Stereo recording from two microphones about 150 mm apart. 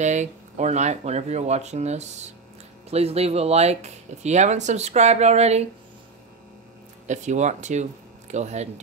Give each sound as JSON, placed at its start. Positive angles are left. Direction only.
{"t": 0.0, "sound": "speech", "side_deg": -50}
{"t": 7.1, "sound": "speech", "side_deg": -50}